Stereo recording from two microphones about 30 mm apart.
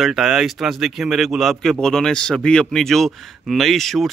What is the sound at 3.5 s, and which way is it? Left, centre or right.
Speech, centre.